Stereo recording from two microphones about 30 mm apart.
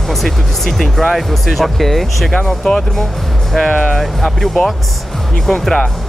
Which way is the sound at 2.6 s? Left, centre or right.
Centre.